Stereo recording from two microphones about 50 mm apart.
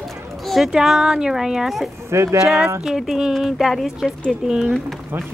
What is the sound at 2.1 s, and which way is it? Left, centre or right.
Speech, right.